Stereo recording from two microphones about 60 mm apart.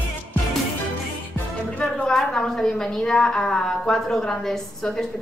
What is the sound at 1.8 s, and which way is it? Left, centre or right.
Music, centre.